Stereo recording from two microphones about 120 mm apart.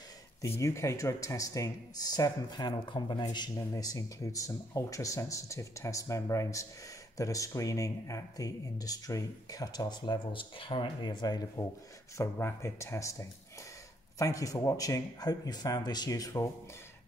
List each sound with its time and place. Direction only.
0.4 s speech: 25° left (ahead or behind)
12.2 s speech: 20° left (ahead or behind)